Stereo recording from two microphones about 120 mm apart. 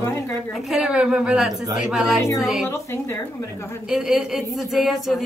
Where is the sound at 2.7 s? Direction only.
25° left (ahead or behind).